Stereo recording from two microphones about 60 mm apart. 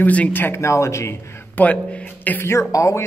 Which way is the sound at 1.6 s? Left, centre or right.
Left.